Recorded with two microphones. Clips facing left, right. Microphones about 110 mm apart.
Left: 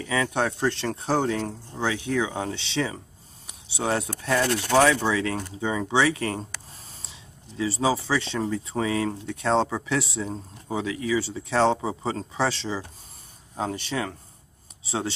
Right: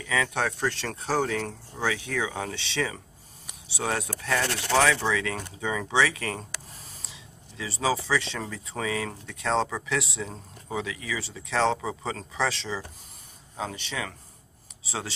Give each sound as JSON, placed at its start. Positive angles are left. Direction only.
{"t": 0.0, "sound": "speech", "side_deg": 30}